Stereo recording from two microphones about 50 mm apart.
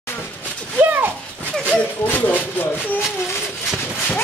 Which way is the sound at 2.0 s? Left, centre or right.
Left.